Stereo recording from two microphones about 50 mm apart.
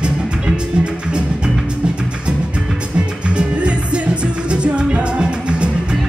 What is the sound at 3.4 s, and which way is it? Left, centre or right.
Music, right.